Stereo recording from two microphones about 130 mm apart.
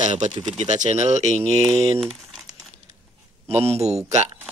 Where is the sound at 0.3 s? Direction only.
30° right (ahead or behind).